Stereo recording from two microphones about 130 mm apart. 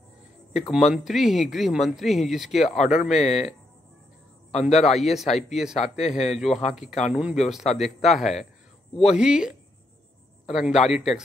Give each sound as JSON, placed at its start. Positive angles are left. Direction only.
{"t": 0.7, "sound": "speech", "side_deg": -5}
{"t": 3.2, "sound": "a man's voice", "side_deg": 55}
{"t": 4.9, "sound": "speech", "side_deg": 0}
{"t": 6.0, "sound": "a man's voice", "side_deg": 60}
{"t": 6.3, "sound": "speech", "side_deg": 0}